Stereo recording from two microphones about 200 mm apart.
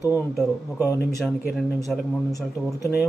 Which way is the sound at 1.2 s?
Centre (ahead or behind).